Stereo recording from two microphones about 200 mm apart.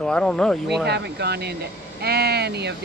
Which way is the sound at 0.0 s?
5° left (ahead or behind).